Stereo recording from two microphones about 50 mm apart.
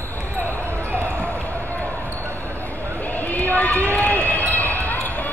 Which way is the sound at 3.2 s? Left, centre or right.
Left.